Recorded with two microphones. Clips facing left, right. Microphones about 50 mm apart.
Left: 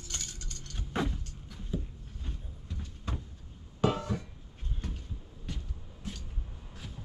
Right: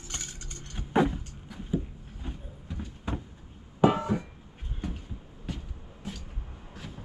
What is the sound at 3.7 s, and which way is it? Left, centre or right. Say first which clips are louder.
Music: right 6 dB; centre.